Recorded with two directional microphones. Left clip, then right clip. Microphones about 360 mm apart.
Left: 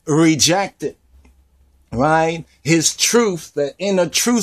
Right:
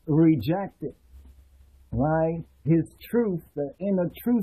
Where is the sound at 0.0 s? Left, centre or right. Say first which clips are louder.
Left 8 dB; left.